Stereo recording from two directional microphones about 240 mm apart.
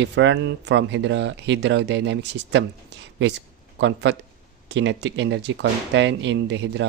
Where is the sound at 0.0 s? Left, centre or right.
Right.